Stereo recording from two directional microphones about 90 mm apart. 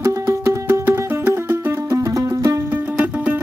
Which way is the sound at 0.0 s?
35° right (ahead or behind).